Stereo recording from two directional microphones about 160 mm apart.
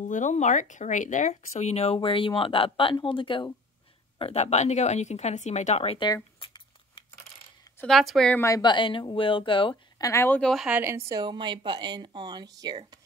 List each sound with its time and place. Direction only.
0.0 s a woman's voice: 50° left (ahead or behind)
6.0 s a sound: 25° left (ahead or behind)
7.8 s speech: centre (ahead or behind)
8.4 s speech: 20° left (ahead or behind)
10.0 s speech: 15° left (ahead or behind)
10.5 s a woman's voice: 5° right (ahead or behind); by 13.0 s 25° right (ahead or behind)